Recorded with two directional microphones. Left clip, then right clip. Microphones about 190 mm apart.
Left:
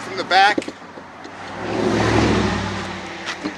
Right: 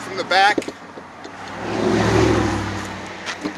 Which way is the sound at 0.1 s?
15° left (ahead or behind).